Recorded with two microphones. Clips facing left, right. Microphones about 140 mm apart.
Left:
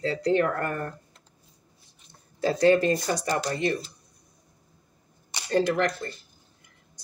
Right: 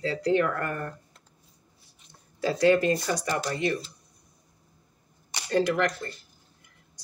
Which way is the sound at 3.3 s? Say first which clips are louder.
Left 2 dB; 40° left (ahead or behind).